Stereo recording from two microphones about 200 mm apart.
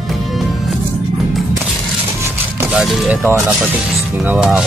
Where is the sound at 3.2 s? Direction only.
15° right (ahead or behind).